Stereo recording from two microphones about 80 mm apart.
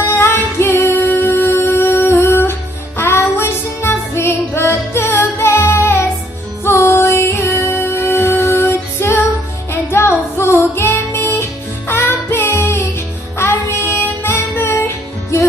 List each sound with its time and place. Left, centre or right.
0.0 s music: left